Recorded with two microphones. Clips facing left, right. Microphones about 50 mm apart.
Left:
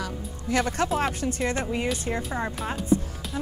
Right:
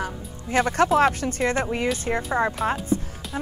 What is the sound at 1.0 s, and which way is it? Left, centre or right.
Speech, right.